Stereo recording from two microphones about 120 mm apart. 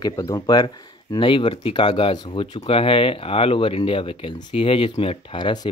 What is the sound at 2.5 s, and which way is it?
Speech, 55° left (ahead or behind).